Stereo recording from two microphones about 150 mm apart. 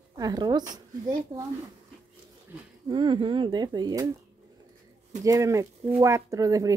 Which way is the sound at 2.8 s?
30° right (ahead or behind).